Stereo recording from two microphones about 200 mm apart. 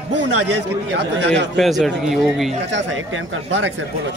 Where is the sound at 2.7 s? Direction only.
75° right (ahead or behind).